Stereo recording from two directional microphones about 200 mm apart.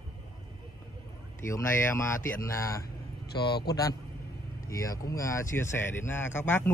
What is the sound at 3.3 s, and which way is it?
Speech, 55° left (ahead or behind).